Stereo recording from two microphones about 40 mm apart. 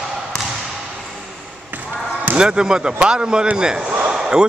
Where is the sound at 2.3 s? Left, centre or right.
Right.